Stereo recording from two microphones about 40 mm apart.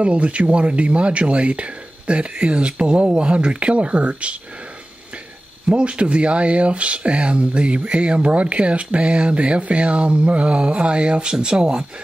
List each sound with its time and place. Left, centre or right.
0.0 s speech: right
5.7 s speech: right